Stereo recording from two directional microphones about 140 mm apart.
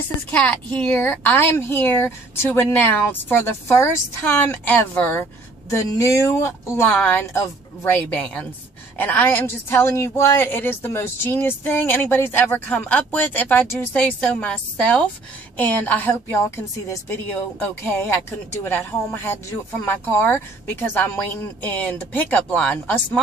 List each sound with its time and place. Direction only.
0.3 s a woman's voice: 10° left (ahead or behind)